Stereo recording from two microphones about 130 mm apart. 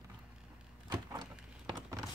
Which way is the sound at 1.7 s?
30° right (ahead or behind).